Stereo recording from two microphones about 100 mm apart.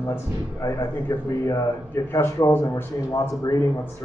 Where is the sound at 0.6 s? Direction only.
35° left (ahead or behind).